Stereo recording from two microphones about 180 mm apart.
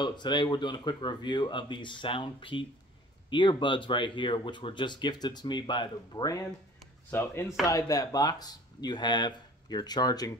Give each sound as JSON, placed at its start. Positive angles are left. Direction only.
{"t": 0.0, "sound": "speech", "side_deg": 25}